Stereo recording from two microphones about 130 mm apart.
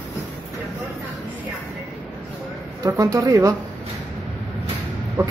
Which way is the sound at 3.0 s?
25° right (ahead or behind).